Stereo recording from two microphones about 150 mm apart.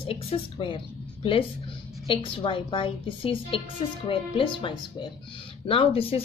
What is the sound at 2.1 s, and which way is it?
A woman's voice, 35° left (ahead or behind).